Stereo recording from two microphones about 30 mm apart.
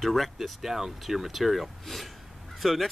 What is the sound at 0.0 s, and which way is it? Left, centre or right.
Speech, centre.